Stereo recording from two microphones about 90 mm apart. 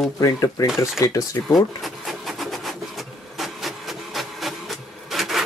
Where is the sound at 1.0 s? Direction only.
40° left (ahead or behind).